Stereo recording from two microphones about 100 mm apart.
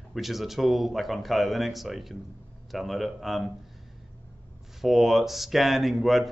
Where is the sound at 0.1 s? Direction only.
Centre (ahead or behind).